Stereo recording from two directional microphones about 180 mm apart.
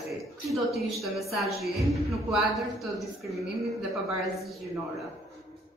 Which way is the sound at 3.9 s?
15° right (ahead or behind).